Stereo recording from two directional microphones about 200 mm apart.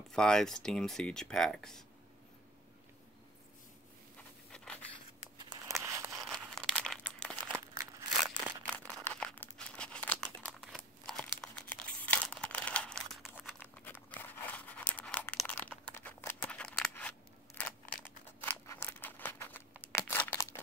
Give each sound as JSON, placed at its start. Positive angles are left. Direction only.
{"t": 0.1, "sound": "speech", "side_deg": 5}
{"t": 4.5, "sound": "a sound", "side_deg": 5}
{"t": 5.9, "sound": "a sound", "side_deg": -15}
{"t": 6.1, "sound": "crumpling", "side_deg": 0}
{"t": 7.5, "sound": "crumpling", "side_deg": -15}
{"t": 8.6, "sound": "crumpling", "side_deg": 10}
{"t": 13.8, "sound": "tearing", "side_deg": 10}
{"t": 17.6, "sound": "a sound", "side_deg": 10}
{"t": 19.8, "sound": "crumpling", "side_deg": 10}